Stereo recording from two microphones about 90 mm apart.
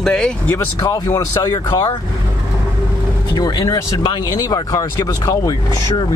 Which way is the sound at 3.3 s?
45° left (ahead or behind).